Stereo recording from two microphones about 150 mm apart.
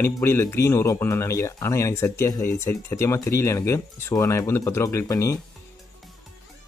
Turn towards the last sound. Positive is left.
turn(degrees=20)  # may be behind; listen again after turning